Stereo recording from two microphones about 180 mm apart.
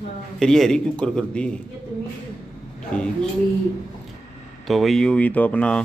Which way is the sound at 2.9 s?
5° left (ahead or behind).